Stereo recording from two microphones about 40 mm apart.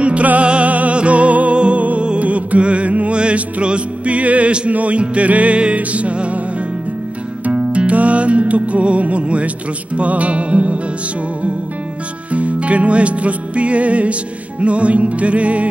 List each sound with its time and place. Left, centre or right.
0.0 s music: right
7.4 s music: right
12.3 s music: right